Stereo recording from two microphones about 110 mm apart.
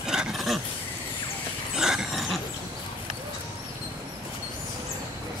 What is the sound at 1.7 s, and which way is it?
Dog, 5° right (ahead or behind).